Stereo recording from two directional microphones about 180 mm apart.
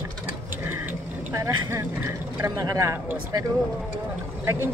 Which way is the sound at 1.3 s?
15° right (ahead or behind).